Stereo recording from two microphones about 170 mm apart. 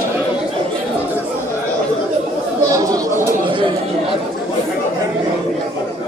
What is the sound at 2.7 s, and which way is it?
Chatter, 20° right (ahead or behind).